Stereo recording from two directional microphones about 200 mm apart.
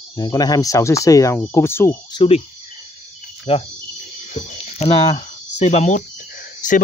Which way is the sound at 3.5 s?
25° left (ahead or behind).